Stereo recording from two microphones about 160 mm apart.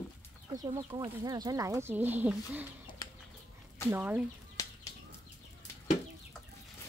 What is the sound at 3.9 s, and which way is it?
Speech, 10° right (ahead or behind).